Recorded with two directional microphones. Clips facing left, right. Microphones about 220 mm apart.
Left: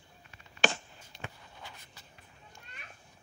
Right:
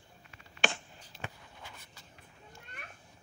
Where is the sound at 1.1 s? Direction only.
5° right (ahead or behind).